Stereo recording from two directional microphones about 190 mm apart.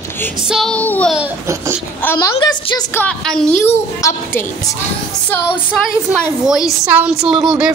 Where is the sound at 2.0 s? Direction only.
15° left (ahead or behind).